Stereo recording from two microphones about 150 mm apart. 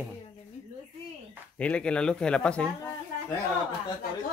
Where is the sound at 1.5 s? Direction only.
10° left (ahead or behind).